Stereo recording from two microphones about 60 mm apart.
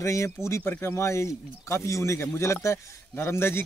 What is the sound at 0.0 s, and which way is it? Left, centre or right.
Speech, left.